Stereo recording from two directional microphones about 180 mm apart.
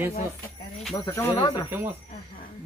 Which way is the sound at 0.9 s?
15° left (ahead or behind).